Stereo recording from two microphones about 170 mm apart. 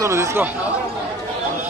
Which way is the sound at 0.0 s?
15° right (ahead or behind).